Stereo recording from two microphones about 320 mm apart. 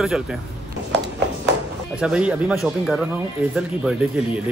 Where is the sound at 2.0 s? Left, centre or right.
Centre.